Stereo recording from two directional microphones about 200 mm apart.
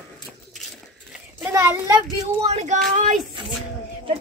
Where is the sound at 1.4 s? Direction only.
10° right (ahead or behind).